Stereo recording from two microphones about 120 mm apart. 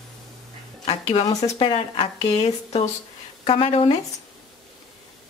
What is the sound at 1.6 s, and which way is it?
Speech, 45° left (ahead or behind).